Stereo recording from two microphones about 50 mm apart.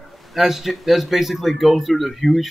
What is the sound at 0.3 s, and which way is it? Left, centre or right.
Speech, centre.